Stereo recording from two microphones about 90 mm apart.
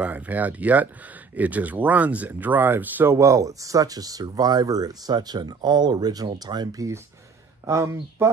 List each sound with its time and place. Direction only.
0.0 s speech: 20° right (ahead or behind)
3.2 s speech: 35° right (ahead or behind)
7.6 s speech: 35° right (ahead or behind)